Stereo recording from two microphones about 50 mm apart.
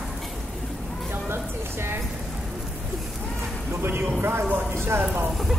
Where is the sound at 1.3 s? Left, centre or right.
Right.